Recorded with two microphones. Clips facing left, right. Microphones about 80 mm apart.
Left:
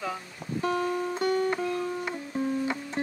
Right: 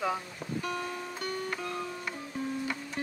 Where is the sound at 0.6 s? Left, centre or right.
Left.